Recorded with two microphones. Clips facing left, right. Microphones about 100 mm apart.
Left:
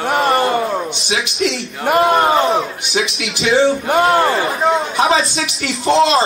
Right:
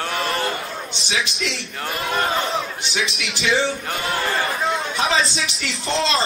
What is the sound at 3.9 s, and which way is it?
Speech, 70° left (ahead or behind).